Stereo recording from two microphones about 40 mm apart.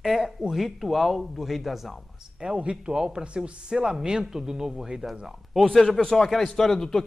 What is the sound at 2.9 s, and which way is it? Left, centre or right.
Speech, centre.